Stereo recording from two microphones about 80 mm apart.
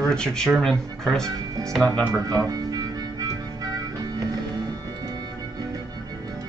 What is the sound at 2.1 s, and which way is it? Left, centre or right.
Speech, right.